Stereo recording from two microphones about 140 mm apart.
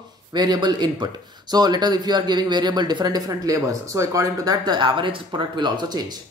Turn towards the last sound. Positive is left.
turn(degrees=-30)  # may be behind; listen again after turning